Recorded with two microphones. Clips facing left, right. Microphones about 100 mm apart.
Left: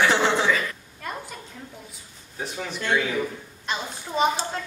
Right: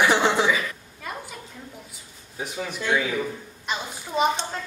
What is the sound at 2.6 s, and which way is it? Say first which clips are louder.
Speech: even; 5° right (ahead or behind).